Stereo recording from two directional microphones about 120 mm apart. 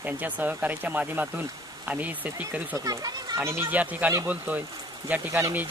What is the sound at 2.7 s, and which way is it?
Speech, 30° right (ahead or behind).